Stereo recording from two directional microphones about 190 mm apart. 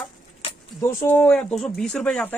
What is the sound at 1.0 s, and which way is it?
Speech, 10° left (ahead or behind).